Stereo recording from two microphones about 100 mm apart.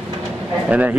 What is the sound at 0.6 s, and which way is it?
Speech, 15° right (ahead or behind).